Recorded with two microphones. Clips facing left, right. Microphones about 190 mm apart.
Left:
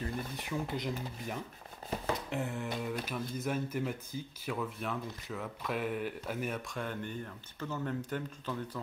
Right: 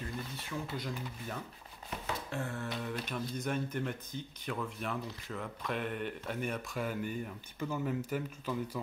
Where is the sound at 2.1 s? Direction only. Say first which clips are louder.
Left 1 dB; 20° left (ahead or behind).